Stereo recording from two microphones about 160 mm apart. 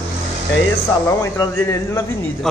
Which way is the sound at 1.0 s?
20° left (ahead or behind).